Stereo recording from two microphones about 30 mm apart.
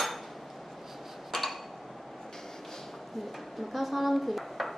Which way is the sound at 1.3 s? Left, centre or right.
Centre.